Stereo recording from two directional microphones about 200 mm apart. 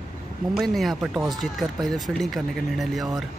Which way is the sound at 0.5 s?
Centre (ahead or behind).